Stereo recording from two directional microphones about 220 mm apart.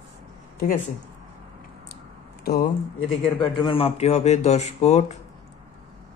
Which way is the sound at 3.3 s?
20° left (ahead or behind).